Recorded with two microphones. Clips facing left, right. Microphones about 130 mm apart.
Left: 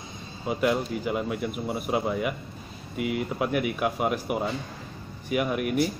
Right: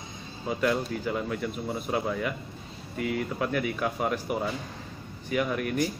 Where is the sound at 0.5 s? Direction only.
10° left (ahead or behind).